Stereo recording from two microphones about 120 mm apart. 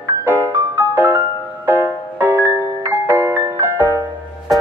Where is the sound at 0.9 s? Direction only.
15° right (ahead or behind).